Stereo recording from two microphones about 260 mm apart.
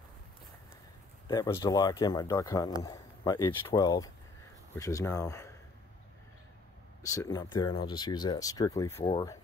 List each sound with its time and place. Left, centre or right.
1.3 s speech: centre
7.0 s speech: centre